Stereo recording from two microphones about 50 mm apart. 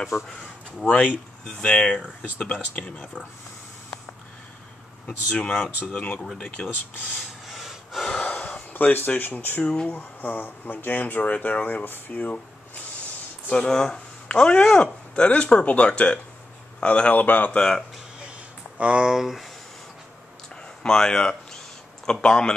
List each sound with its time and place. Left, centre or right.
0.8 s speech: left
5.0 s speech: left
7.2 s gasp: centre
8.3 s speech: left
13.5 s speech: centre
17.2 s speech: left
17.5 s speech: centre
18.8 s speech: right
19.1 s speech: centre
20.8 s speech: centre